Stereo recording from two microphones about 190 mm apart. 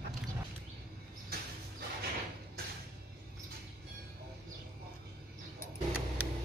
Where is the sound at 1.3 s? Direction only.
55° right (ahead or behind).